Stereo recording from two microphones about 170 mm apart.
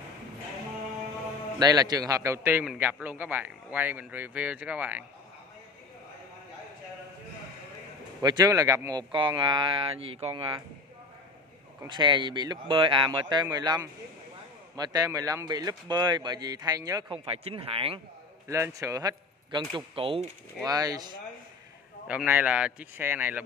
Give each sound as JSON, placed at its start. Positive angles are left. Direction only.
{"t": 1.6, "sound": "a man's voice", "side_deg": -25}
{"t": 8.2, "sound": "speech", "side_deg": -25}
{"t": 11.9, "sound": "speech", "side_deg": -25}
{"t": 17.2, "sound": "speech", "side_deg": -35}
{"t": 18.5, "sound": "a man's voice", "side_deg": -20}
{"t": 19.7, "sound": "speech", "side_deg": -30}
{"t": 20.6, "sound": "speech", "side_deg": -20}
{"t": 22.0, "sound": "a man's voice", "side_deg": -10}